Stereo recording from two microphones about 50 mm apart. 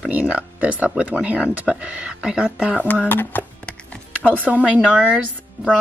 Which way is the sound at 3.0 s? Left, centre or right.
Left.